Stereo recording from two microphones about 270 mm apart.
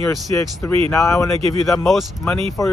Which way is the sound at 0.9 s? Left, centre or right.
Centre.